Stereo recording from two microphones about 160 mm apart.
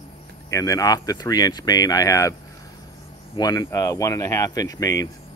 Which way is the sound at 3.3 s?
25° left (ahead or behind).